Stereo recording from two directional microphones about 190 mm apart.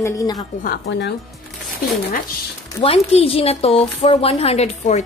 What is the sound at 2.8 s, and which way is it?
Speech, 30° left (ahead or behind).